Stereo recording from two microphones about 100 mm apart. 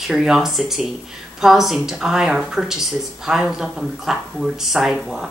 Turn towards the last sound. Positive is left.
turn(degrees=-5)  # may be behind; listen again after turning